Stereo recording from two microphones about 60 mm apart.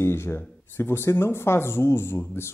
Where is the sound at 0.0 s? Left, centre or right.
Left.